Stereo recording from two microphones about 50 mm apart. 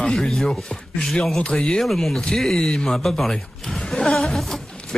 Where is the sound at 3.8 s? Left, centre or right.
Centre.